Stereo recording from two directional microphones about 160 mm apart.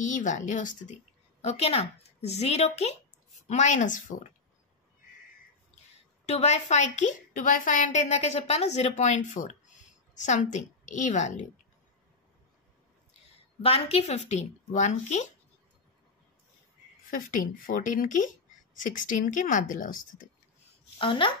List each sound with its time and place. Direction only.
0.0 s a woman's voice: 50° left (ahead or behind)
1.4 s speech: 40° left (ahead or behind)
6.2 s a woman's voice: 40° left (ahead or behind)
13.6 s a woman's voice: 40° left (ahead or behind)
17.1 s a woman's voice: 60° left (ahead or behind)
21.0 s speech: 30° left (ahead or behind)